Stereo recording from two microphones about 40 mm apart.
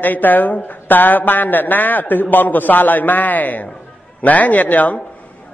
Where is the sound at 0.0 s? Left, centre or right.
Left.